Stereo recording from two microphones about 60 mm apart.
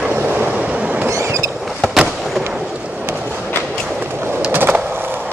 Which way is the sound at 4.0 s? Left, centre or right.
Right.